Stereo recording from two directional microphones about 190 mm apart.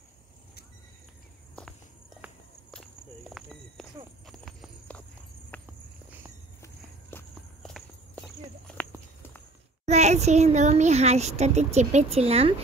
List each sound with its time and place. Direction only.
1.5 s walk: 5° left (ahead or behind)
4.3 s clip-clop: centre (ahead or behind)
5.5 s walk: 10° left (ahead or behind)
9.8 s a child's voice: 35° right (ahead or behind)